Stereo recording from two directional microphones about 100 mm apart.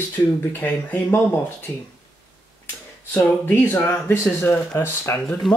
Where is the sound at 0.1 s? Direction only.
20° left (ahead or behind).